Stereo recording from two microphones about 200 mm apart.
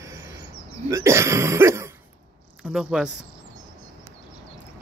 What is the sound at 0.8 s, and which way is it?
Throat clearing, 15° right (ahead or behind).